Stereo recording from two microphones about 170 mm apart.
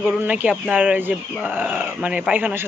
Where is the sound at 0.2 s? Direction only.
10° right (ahead or behind).